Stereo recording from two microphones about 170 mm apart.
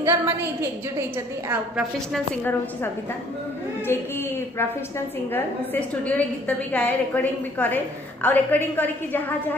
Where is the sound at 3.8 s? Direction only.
15° left (ahead or behind).